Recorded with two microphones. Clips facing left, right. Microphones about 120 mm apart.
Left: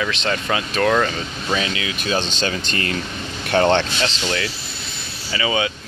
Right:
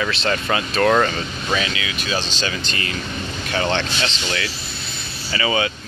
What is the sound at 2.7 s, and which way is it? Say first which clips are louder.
Speech: left 3 dB; 50° left (ahead or behind).